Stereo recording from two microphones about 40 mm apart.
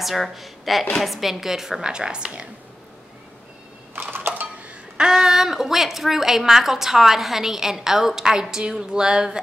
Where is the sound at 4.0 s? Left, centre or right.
Right.